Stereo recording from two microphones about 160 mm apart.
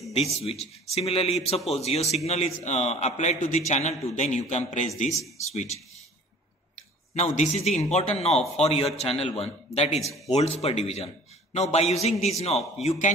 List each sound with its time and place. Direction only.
0.1 s a man's voice: 40° left (ahead or behind)
7.2 s a man's voice: 40° left (ahead or behind)